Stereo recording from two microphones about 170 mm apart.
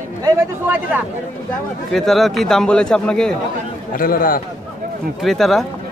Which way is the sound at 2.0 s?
Centre (ahead or behind).